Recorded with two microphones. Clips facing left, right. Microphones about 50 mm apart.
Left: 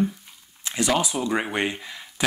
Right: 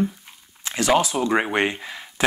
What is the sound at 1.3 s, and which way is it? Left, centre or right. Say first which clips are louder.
Speech: right 5 dB; right.